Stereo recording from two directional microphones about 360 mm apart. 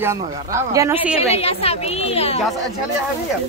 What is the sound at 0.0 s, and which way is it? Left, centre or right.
Speech, centre.